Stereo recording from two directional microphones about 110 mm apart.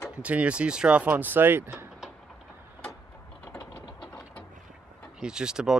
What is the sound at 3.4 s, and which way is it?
Mechanisms, 35° left (ahead or behind).